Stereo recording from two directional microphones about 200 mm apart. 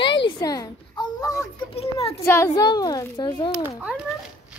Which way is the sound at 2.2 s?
15° left (ahead or behind).